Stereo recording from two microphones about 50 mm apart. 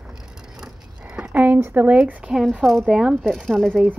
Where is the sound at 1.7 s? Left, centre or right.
Right.